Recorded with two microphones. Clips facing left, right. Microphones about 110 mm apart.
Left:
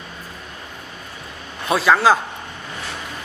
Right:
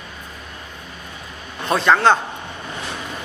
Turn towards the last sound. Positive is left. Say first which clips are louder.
# even
turn(degrees=5)  # may be behind; listen again after turning